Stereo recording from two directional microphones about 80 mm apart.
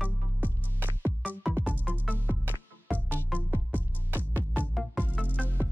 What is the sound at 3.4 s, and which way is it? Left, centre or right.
Music, right.